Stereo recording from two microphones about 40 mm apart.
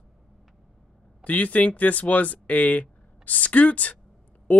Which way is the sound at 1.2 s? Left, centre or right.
Left.